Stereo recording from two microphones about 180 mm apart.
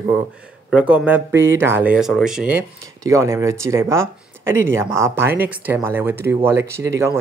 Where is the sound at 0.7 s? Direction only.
5° right (ahead or behind).